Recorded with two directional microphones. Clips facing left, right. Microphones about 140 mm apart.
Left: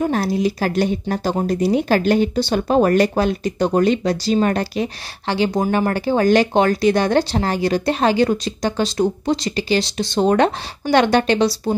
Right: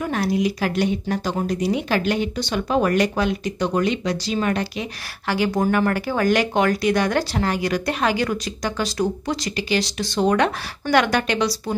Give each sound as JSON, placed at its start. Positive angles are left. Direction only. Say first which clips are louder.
{"t": 0.0, "sound": "speech", "louder": "left 3 dB", "side_deg": 35}
{"t": 5.3, "sound": "speech", "louder": "left 2 dB", "side_deg": 25}